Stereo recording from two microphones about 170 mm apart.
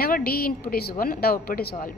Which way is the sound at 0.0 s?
60° left (ahead or behind).